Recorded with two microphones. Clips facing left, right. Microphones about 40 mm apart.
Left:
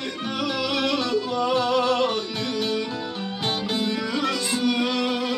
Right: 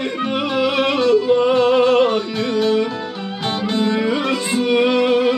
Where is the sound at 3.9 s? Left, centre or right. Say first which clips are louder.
Right 7 dB; right.